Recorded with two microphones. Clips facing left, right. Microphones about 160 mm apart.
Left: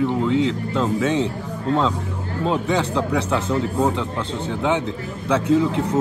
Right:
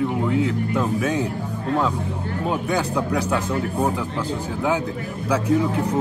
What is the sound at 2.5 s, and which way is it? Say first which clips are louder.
Speech: left 2 dB; 30° left (ahead or behind).